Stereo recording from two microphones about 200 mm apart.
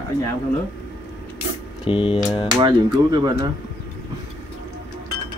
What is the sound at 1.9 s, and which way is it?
Speech, 25° left (ahead or behind).